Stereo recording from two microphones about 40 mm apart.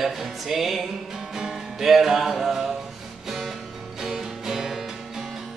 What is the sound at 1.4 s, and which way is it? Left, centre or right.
Music, centre.